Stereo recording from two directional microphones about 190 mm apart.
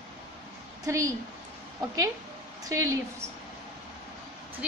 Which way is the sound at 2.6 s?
15° right (ahead or behind).